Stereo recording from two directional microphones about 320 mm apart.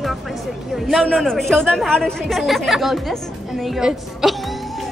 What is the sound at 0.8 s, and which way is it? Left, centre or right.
Music, centre.